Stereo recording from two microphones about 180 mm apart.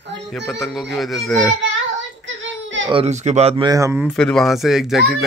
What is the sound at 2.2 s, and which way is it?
Child singing, 90° right.